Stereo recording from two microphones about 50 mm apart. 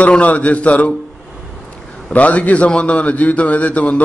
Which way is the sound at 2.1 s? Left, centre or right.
Left.